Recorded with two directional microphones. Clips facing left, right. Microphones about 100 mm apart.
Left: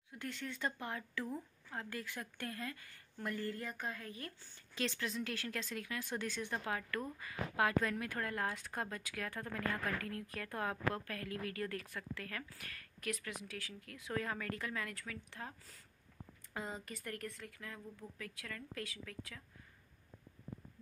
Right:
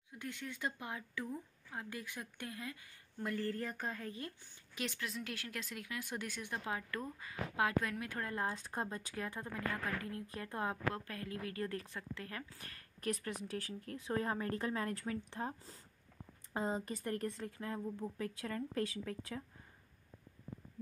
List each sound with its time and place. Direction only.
0.2 s speech: 15° right (ahead or behind)
3.4 s speech: 35° right (ahead or behind)
4.4 s speech: 10° right (ahead or behind); by 19.4 s 30° right (ahead or behind)